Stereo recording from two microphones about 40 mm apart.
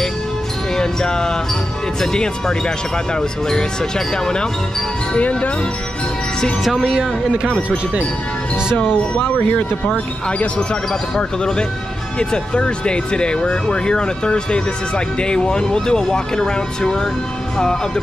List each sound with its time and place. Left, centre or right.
0.7 s speech: centre
10.9 s speech: centre